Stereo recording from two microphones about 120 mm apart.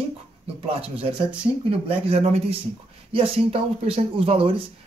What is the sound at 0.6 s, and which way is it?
Speech, 55° right (ahead or behind).